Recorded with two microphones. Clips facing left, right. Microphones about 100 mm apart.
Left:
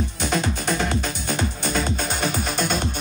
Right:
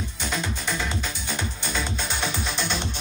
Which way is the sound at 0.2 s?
55° left (ahead or behind).